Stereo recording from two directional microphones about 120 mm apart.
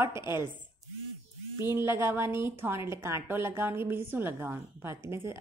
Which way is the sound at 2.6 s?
20° right (ahead or behind).